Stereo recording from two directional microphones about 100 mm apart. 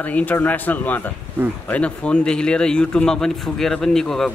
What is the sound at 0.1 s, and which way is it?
A man's voice, 15° left (ahead or behind).